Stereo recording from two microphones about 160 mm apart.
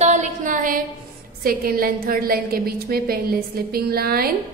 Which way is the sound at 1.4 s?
65° right (ahead or behind).